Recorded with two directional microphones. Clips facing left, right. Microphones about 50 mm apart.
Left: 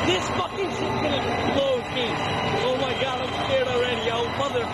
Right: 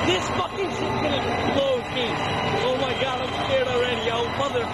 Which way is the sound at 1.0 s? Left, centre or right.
Right.